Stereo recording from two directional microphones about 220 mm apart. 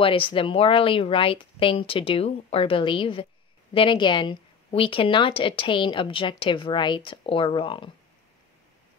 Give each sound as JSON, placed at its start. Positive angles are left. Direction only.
{"t": 0.0, "sound": "a woman's voice", "side_deg": 25}